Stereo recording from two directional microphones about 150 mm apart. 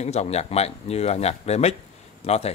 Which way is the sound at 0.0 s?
45° left (ahead or behind).